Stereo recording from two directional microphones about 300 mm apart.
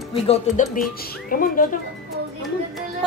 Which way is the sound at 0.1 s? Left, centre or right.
Centre.